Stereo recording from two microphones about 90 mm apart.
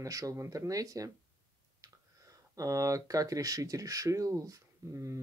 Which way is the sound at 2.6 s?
40° right (ahead or behind).